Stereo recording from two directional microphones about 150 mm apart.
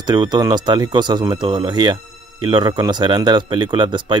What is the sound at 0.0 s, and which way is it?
A man's voice, 30° right (ahead or behind).